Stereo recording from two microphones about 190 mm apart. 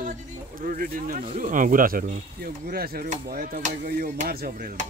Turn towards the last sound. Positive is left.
turn(degrees=-45)  # may be behind; listen again after turning